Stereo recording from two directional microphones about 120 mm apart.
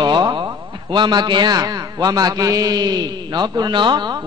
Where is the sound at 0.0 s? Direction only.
40° right (ahead or behind).